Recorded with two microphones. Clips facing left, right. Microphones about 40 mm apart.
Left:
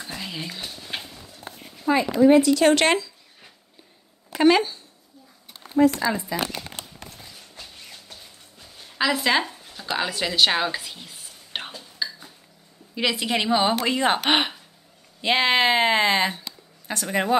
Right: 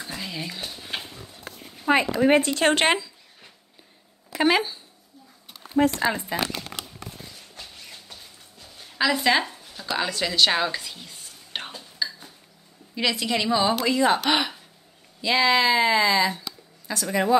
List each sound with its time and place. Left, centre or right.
0.0 s a sound: centre
1.9 s speech: right
2.8 s speech: centre
4.4 s speech: centre
5.9 s speech: right
7.2 s horse: centre
8.7 s a sound: centre
9.8 s speech: centre
11.8 s whispering: centre
13.1 s a woman's voice: left
16.3 s a sound: left